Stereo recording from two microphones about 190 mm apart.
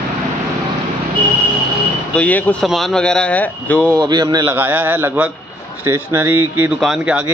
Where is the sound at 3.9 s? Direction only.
20° right (ahead or behind); by 7.2 s 5° right (ahead or behind).